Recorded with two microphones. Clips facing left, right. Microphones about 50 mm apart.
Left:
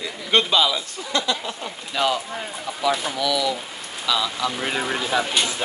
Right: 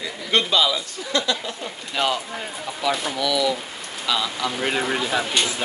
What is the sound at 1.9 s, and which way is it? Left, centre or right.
Speech, centre.